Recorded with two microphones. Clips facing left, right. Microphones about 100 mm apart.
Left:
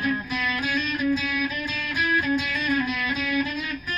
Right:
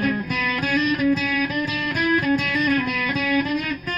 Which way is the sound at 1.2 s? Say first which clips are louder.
Right 5 dB; 65° right (ahead or behind).